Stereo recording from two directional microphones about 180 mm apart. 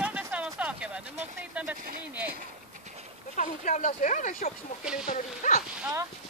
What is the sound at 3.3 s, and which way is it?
Speech, 45° left (ahead or behind).